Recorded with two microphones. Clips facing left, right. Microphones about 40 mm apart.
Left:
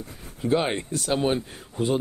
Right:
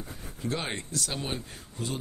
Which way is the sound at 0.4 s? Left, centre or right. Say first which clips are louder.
Left 9 dB; left.